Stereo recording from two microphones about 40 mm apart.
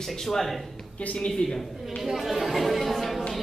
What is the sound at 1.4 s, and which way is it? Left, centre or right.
Speech, centre.